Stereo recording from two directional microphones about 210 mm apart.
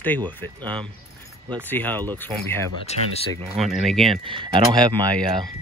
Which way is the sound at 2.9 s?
30° left (ahead or behind).